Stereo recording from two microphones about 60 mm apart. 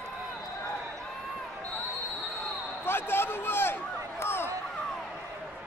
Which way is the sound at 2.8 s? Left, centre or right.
Left.